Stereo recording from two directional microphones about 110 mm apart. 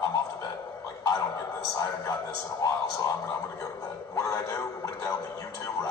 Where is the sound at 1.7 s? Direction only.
35° left (ahead or behind).